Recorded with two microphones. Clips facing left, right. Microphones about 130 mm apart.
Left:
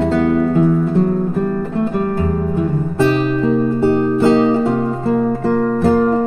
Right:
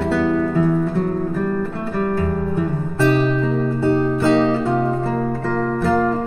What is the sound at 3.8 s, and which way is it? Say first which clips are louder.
Music: left 4 dB; 20° left (ahead or behind).